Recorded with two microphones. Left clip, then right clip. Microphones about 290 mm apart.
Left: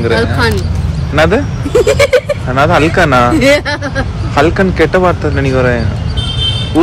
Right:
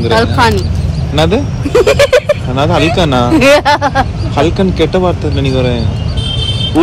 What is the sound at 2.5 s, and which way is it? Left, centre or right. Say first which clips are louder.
Speech: left 7 dB; centre.